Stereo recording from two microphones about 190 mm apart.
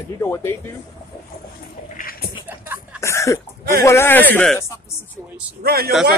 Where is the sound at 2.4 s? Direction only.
10° right (ahead or behind).